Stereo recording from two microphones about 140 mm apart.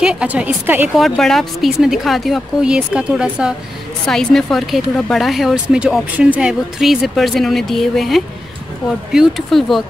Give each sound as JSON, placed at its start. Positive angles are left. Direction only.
{"t": 0.0, "sound": "a woman's voice", "side_deg": -5}
{"t": 0.9, "sound": "speech", "side_deg": 0}